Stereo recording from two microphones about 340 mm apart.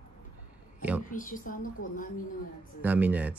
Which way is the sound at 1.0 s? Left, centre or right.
Left.